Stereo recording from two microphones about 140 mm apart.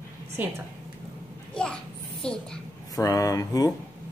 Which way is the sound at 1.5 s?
5° left (ahead or behind).